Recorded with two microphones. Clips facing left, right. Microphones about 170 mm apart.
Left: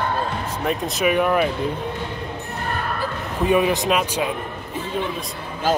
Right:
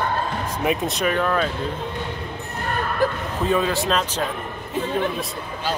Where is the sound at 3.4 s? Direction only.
15° left (ahead or behind).